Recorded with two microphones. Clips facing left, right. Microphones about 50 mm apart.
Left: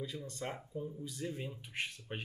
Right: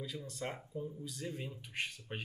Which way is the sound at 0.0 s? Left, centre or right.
Centre.